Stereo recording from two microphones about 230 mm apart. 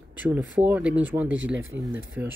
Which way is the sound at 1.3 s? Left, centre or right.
Right.